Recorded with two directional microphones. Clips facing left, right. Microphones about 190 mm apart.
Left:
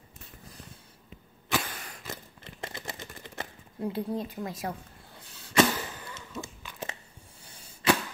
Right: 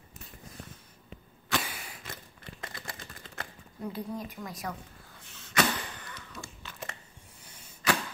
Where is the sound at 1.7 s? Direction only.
10° right (ahead or behind).